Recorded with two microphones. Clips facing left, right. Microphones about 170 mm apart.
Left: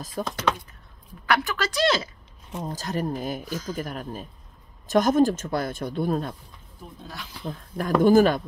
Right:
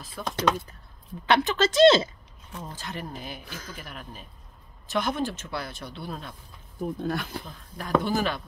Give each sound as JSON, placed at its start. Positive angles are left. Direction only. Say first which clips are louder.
{"t": 0.2, "sound": "speech", "louder": "left 4 dB", "side_deg": 40}
{"t": 1.2, "sound": "a woman's voice", "louder": "right 3 dB", "side_deg": -20}
{"t": 2.6, "sound": "speech", "louder": "left 9 dB", "side_deg": 40}
{"t": 6.8, "sound": "speech", "louder": "right 12 dB", "side_deg": -55}
{"t": 7.4, "sound": "speech", "louder": "left 9 dB", "side_deg": 50}